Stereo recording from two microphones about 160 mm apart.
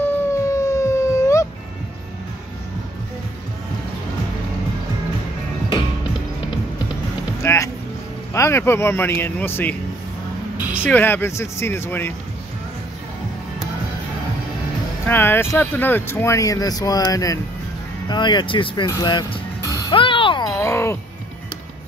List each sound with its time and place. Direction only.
0.0 s howl: 20° left (ahead or behind)
7.4 s music: 20° left (ahead or behind)
8.3 s speech: 15° left (ahead or behind)
10.6 s vehicle: 10° right (ahead or behind)
10.9 s speech: 10° left (ahead or behind)
15.0 s speech: 15° left (ahead or behind)
19.7 s music: 30° left (ahead or behind)
20.5 s music: 15° left (ahead or behind)